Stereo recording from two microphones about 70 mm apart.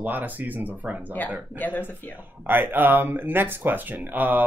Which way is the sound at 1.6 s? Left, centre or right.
Left.